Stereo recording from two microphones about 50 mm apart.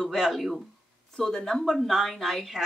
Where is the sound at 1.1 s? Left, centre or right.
Centre.